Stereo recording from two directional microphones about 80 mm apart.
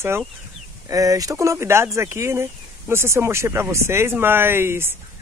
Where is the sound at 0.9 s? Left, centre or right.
Right.